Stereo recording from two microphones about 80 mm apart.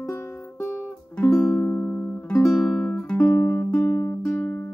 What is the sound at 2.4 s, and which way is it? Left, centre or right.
Music, centre.